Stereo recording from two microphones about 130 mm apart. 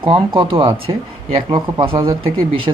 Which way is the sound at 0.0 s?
40° right (ahead or behind).